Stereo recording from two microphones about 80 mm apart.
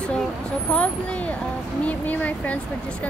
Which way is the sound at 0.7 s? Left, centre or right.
Centre.